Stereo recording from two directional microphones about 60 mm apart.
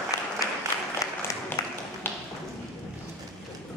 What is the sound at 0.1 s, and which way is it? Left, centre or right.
Applause, left.